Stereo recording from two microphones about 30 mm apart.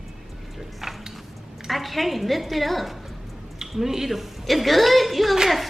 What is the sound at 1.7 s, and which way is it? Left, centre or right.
A woman's voice, centre.